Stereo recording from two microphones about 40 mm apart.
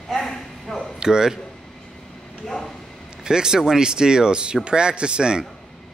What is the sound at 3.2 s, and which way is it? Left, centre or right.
Speech, centre.